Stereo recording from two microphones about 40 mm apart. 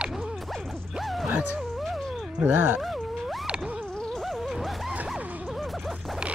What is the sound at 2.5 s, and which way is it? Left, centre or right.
Speech, right.